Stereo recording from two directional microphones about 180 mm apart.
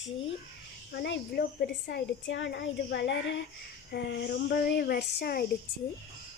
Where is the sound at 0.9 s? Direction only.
75° left (ahead or behind).